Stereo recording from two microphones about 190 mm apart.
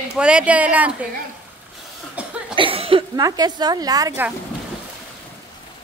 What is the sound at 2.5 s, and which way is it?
Cough, 30° right (ahead or behind).